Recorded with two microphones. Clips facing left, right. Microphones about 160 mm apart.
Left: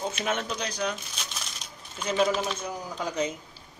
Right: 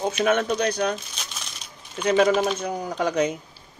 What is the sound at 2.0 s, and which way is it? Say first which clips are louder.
Speech: right 7 dB; 65° right (ahead or behind).